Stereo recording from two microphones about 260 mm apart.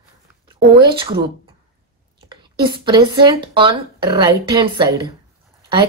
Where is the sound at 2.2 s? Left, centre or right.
Centre.